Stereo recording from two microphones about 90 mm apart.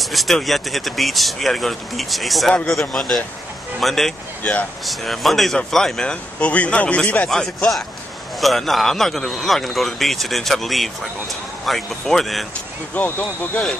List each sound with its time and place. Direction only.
0.0 s speech: centre (ahead or behind)
4.4 s speech: 15° left (ahead or behind)
4.8 s speech: centre (ahead or behind)
7.2 s speech: centre (ahead or behind)
12.9 s speech: 20° left (ahead or behind)